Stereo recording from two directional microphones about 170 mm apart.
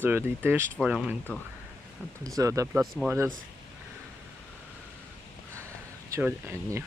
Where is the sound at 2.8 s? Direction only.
Centre (ahead or behind).